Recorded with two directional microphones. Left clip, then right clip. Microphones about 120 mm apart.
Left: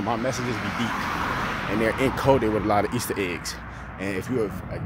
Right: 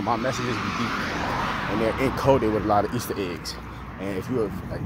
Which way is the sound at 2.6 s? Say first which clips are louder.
Even; 30° left (ahead or behind).